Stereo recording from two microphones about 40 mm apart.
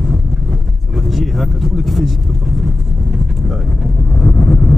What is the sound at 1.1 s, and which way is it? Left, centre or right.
Vehicle, centre.